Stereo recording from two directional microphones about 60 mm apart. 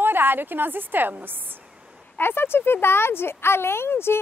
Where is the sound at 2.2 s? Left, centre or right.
Left.